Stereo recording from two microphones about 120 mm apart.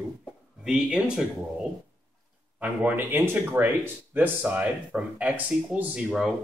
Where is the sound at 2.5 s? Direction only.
15° right (ahead or behind).